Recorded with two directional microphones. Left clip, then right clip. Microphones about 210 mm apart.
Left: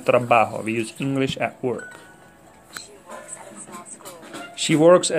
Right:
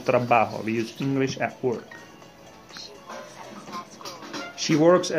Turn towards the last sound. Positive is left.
turn(degrees=20)  # may be behind; listen again after turning